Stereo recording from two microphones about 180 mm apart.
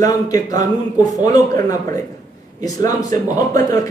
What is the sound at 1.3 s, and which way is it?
Speech, 20° left (ahead or behind).